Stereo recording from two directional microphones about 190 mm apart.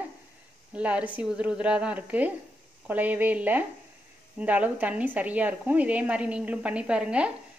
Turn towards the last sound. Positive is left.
turn(degrees=-5)  # may be behind; listen again after turning